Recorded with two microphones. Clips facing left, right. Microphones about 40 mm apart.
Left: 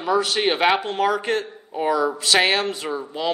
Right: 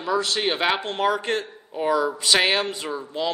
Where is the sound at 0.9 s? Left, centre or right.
Centre.